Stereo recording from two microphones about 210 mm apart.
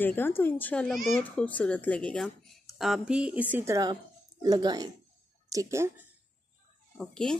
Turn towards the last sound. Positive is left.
turn(degrees=5)  # may be behind; listen again after turning